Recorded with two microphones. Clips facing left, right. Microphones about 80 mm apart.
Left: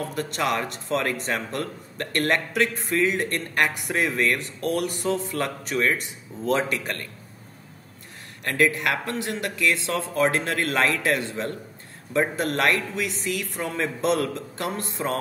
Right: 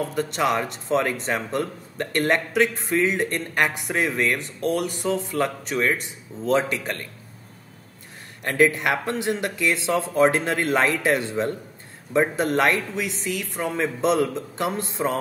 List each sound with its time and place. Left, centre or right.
0.1 s speech: centre
8.5 s speech: right
12.2 s speech: centre
14.2 s speech: centre